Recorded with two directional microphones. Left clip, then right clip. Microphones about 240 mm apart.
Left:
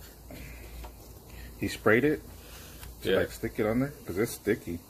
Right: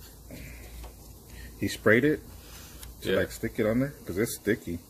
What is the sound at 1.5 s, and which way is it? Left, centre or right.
Speech, right.